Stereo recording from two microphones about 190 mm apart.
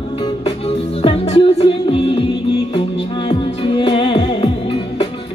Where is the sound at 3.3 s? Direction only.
30° left (ahead or behind).